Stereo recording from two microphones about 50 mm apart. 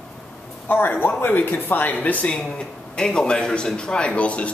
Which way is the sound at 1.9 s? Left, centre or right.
Left.